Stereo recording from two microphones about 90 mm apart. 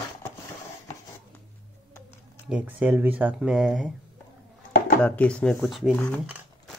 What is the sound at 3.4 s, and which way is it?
Speech, 5° right (ahead or behind).